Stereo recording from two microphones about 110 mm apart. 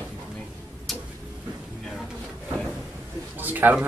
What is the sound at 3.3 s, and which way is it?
Speech, 15° right (ahead or behind).